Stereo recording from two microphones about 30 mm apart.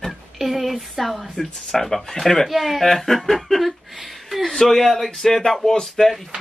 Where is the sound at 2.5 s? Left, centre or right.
Centre.